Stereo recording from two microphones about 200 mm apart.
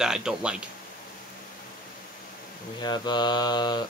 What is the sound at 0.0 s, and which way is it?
Speech, 5° right (ahead or behind).